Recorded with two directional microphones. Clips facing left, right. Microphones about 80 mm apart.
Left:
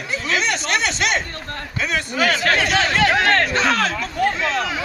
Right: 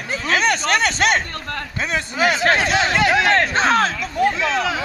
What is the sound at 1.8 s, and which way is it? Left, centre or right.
Speech, right.